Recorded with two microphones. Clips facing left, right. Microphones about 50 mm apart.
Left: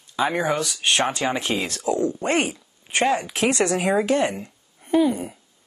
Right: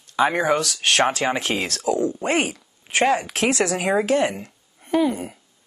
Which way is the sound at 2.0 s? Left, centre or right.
Centre.